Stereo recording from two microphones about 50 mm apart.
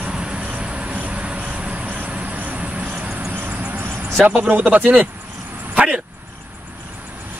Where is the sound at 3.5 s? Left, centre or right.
Right.